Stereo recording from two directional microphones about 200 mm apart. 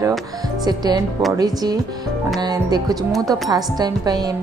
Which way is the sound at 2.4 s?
20° right (ahead or behind).